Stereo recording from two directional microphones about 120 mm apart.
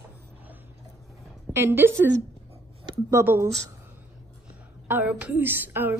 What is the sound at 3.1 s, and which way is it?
Speech, 20° right (ahead or behind).